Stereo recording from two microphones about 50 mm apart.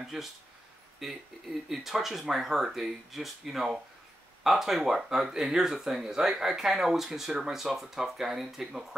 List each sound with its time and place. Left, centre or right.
0.0 s speech: centre